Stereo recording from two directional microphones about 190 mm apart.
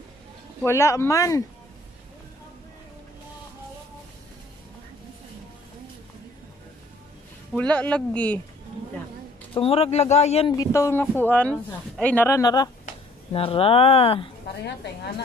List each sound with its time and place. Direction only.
0.7 s speech: 15° left (ahead or behind)
7.5 s speech: 5° left (ahead or behind)
9.5 s speech: 30° left (ahead or behind)
10.5 s speech: 15° left (ahead or behind)
12.8 s speech: 30° left (ahead or behind)
14.6 s a woman's voice: 60° left (ahead or behind)